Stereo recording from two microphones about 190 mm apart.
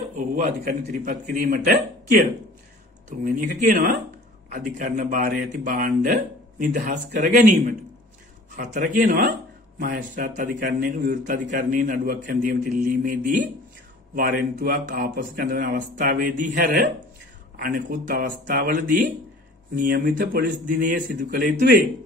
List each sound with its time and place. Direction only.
0.4 s a man's voice: 40° right (ahead or behind)
3.1 s a man's voice: 45° right (ahead or behind)
8.8 s a man's voice: 55° right (ahead or behind)